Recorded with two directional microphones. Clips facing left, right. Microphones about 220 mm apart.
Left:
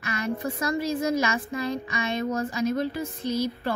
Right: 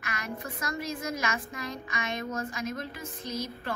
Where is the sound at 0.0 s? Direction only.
30° left (ahead or behind).